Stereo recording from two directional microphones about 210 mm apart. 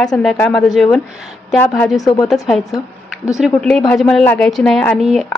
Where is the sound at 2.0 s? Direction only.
20° left (ahead or behind).